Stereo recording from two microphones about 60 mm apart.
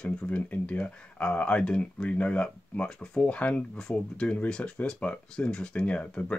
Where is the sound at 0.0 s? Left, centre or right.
Left.